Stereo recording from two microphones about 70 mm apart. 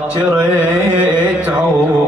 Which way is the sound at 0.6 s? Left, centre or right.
Centre.